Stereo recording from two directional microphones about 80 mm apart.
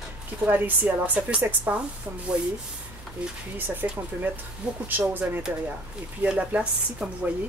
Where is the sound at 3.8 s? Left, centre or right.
Right.